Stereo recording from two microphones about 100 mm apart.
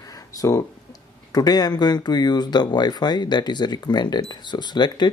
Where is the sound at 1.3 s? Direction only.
40° left (ahead or behind).